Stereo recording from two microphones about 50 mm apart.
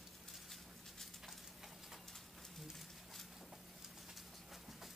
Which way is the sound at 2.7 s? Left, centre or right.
Centre.